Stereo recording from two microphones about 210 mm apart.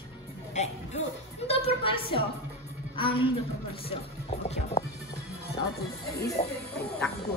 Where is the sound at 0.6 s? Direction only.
35° left (ahead or behind).